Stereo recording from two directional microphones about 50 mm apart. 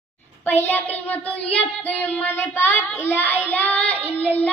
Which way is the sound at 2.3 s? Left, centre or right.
Left.